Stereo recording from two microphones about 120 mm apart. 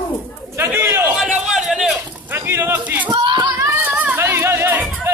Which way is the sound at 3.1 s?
40° right (ahead or behind).